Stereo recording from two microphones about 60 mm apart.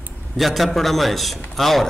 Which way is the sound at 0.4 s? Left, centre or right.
Centre.